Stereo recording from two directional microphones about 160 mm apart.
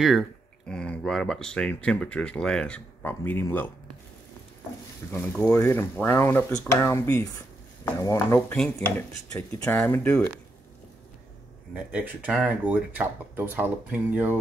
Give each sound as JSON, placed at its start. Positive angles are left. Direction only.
{"t": 0.0, "sound": "speech", "side_deg": 0}
{"t": 5.1, "sound": "speech", "side_deg": 10}
{"t": 11.7, "sound": "speech", "side_deg": -10}